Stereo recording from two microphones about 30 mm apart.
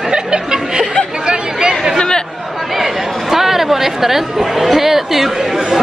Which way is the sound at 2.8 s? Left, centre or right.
Centre.